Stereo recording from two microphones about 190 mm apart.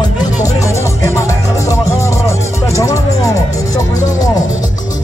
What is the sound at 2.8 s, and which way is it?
Music, 15° left (ahead or behind).